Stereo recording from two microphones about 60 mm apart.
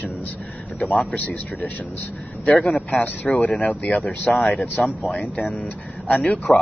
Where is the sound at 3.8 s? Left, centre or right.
Centre.